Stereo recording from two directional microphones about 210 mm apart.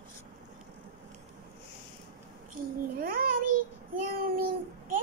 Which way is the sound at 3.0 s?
45° right (ahead or behind).